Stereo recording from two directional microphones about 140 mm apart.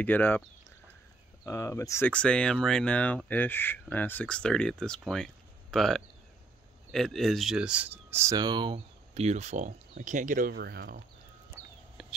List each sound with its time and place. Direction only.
0.0 s speech: 10° left (ahead or behind)
1.4 s speech: 20° left (ahead or behind); by 8.4 s 20° right (ahead or behind)
8.4 s speech: 30° right (ahead or behind)
8.7 s speech: 50° right (ahead or behind); by 11.0 s 75° right (ahead or behind)
12.0 s whispering: centre (ahead or behind)